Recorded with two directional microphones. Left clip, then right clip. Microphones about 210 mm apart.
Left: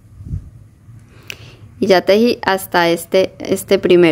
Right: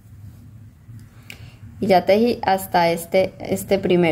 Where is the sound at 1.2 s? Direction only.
25° left (ahead or behind).